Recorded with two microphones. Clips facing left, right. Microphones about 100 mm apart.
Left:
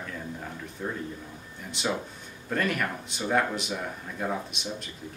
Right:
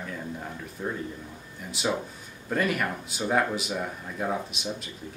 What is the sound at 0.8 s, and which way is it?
Speech, 5° right (ahead or behind).